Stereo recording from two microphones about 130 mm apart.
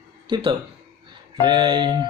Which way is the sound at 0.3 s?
40° right (ahead or behind).